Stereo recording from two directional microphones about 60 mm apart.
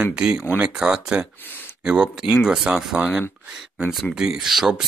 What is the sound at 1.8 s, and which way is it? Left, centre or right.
Speech, centre.